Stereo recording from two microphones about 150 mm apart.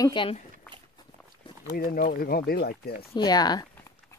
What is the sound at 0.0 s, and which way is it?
Speech, 35° left (ahead or behind).